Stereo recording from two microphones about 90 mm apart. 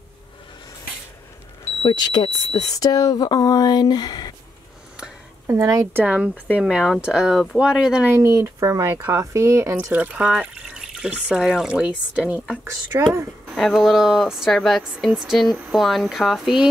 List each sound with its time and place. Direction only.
2.0 s speech: 55° left (ahead or behind)
5.5 s speech: 35° right (ahead or behind)
5.9 s speech: 15° right (ahead or behind)
8.4 s speech: 35° right (ahead or behind)
9.9 s speech: 15° right (ahead or behind)
12.9 s speech: 25° right (ahead or behind)
13.6 s speech: centre (ahead or behind)